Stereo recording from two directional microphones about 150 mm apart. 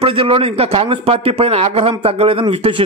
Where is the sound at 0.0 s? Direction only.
35° right (ahead or behind).